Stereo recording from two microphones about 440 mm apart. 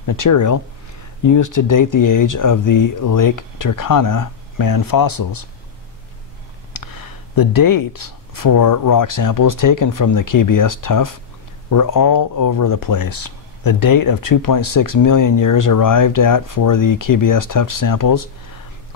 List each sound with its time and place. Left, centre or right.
0.0 s speech: left
6.7 s speech: left